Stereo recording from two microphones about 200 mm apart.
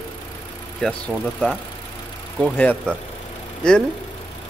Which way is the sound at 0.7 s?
5° left (ahead or behind).